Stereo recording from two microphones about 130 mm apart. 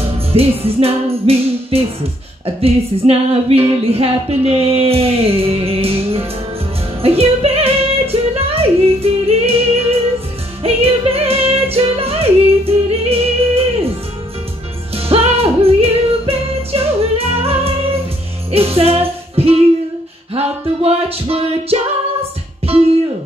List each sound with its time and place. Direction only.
0.3 s singing: 50° right (ahead or behind)
7.0 s music: 50° right (ahead or behind)
15.0 s music: 50° right (ahead or behind)